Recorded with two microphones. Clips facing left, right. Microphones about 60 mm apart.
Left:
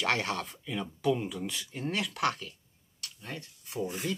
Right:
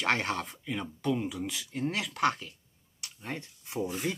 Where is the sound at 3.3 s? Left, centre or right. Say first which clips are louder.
Right 2 dB; right.